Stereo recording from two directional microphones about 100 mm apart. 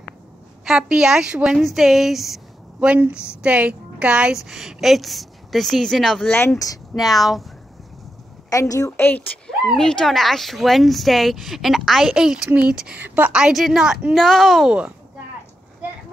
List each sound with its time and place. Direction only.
0.7 s a woman's voice: 5° right (ahead or behind)
6.2 s speech: 20° left (ahead or behind)
7.0 s speech: centre (ahead or behind)
8.5 s a woman's voice: 35° left (ahead or behind)
9.8 s a woman's voice: 5° left (ahead or behind); by 13.3 s 20° right (ahead or behind)
13.3 s speech: 5° right (ahead or behind)